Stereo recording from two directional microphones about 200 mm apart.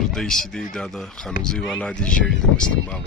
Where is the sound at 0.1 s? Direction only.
Centre (ahead or behind).